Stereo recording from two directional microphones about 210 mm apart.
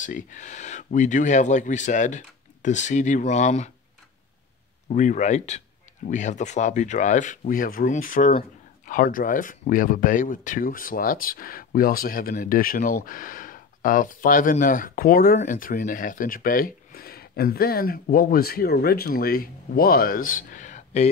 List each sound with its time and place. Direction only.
0.0 s speech: 35° left (ahead or behind)
4.8 s speech: 35° left (ahead or behind)